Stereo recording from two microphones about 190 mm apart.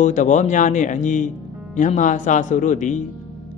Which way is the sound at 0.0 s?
40° left (ahead or behind).